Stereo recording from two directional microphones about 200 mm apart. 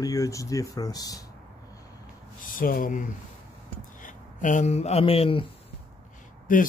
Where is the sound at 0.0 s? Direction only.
15° left (ahead or behind).